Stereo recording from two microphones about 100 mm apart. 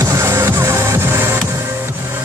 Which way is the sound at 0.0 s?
30° right (ahead or behind).